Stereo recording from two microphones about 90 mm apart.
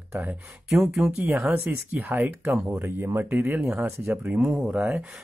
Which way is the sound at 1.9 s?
20° right (ahead or behind).